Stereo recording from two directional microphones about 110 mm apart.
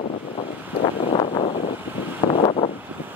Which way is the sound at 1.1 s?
50° left (ahead or behind).